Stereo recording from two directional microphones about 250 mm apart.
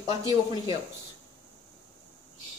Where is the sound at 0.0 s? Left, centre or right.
Centre.